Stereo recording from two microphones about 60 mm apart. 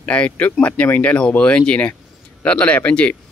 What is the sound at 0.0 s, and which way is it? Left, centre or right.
Speech, left.